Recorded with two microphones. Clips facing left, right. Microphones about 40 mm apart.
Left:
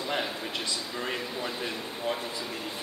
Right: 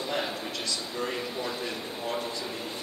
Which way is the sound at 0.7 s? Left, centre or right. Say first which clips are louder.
Right 1 dB; left.